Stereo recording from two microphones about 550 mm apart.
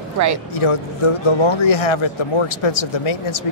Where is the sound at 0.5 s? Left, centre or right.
Left.